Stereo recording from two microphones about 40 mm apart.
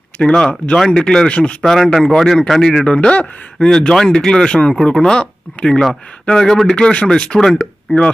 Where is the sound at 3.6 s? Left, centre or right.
Centre.